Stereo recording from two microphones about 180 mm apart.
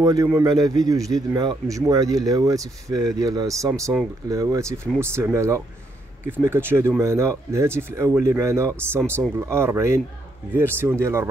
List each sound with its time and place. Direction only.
0.0 s speech: 20° right (ahead or behind)